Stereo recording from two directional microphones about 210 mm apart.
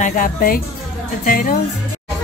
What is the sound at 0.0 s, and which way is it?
A woman's voice, 40° left (ahead or behind).